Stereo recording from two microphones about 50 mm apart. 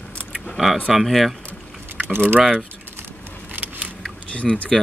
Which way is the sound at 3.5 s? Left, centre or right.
Right.